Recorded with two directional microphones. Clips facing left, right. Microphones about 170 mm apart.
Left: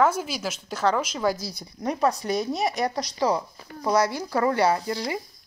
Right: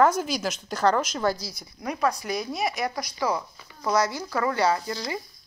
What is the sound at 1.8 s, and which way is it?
Speech, 35° left (ahead or behind).